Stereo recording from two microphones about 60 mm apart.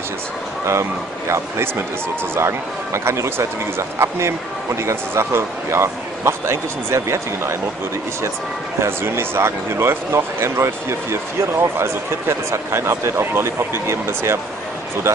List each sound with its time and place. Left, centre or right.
0.7 s speech: right
8.8 s speech: right